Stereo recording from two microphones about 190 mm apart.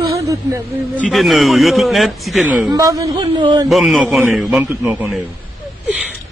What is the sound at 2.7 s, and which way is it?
Speech, 15° right (ahead or behind).